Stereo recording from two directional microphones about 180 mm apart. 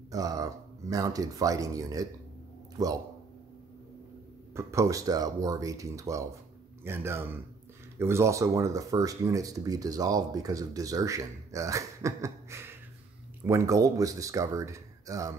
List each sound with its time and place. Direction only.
0.1 s speech: 20° right (ahead or behind)
4.6 s speech: 15° right (ahead or behind)